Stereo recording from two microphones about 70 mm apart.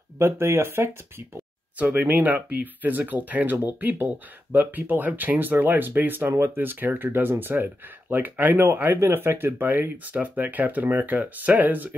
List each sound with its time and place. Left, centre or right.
0.2 s speech: right
1.8 s speech: right